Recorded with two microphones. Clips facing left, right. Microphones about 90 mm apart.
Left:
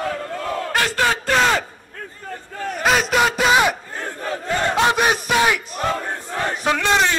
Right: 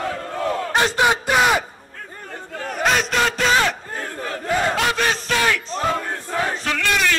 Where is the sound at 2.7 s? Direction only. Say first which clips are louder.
Left 2 dB; centre (ahead or behind).